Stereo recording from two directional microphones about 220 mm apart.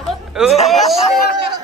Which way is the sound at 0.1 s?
Centre (ahead or behind).